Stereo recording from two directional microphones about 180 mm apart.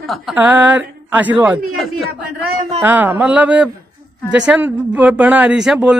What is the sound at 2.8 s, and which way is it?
Speech, 10° right (ahead or behind).